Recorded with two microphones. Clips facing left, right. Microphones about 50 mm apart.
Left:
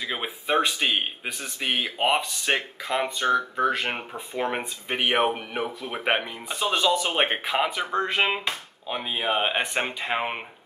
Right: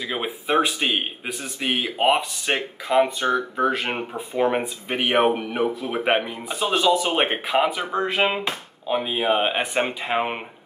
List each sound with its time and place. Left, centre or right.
0.0 s speech: centre